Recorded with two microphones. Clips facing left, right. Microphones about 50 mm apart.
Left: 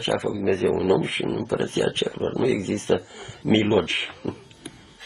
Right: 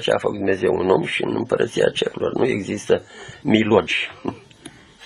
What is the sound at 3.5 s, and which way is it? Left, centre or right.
Speech, right.